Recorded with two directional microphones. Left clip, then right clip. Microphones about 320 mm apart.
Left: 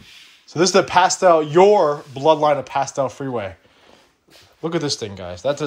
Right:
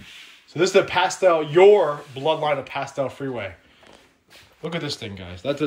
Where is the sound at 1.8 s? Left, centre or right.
Left.